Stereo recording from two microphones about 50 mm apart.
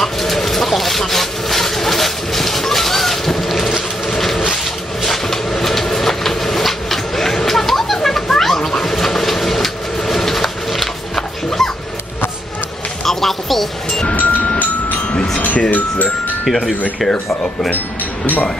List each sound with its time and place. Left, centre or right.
0.0 s a sound: centre
5.0 s train: centre
13.0 s music: centre
14.1 s music: left
16.4 s speech: centre
17.7 s a sound: left